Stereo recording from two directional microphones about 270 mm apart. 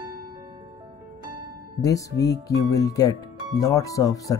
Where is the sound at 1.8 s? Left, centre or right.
Centre.